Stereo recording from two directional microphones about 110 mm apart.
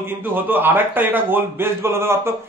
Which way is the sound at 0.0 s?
20° right (ahead or behind).